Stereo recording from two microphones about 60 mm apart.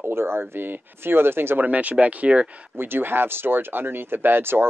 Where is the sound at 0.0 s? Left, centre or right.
Right.